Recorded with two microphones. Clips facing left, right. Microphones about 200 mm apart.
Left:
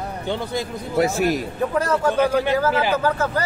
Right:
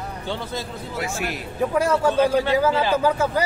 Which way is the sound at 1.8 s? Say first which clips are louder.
Right 1 dB; 10° right (ahead or behind).